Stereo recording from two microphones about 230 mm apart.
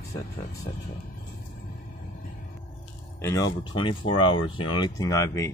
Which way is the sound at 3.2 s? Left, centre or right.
Centre.